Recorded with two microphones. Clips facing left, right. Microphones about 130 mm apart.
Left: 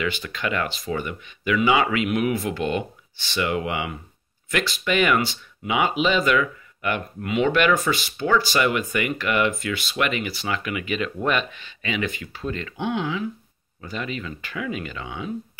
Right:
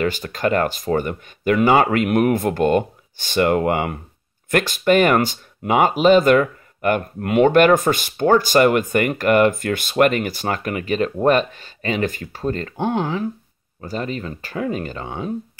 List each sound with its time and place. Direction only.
0.0 s speech: 45° right (ahead or behind)